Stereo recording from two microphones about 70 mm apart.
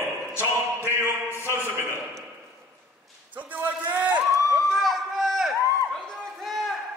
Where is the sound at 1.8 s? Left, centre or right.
Right.